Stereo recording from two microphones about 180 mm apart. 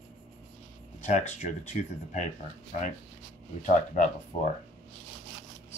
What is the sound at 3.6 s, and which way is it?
Speech, 45° left (ahead or behind).